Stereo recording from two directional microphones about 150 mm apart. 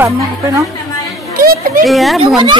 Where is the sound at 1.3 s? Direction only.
75° right (ahead or behind).